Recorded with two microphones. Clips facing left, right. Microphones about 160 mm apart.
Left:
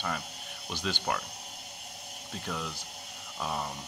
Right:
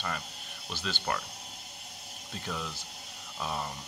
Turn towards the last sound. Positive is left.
turn(degrees=0)  # may be behind; listen again after turning